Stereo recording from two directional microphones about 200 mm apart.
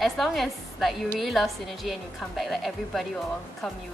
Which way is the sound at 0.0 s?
Centre (ahead or behind).